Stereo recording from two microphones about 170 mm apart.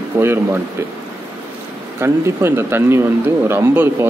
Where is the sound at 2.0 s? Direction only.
15° right (ahead or behind).